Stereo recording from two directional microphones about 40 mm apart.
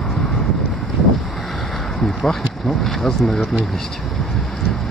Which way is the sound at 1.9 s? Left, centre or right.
Centre.